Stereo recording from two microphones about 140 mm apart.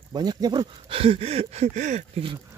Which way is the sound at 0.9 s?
40° right (ahead or behind).